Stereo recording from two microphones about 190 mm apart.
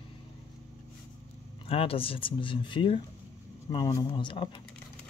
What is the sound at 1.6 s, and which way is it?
Speech, 30° left (ahead or behind).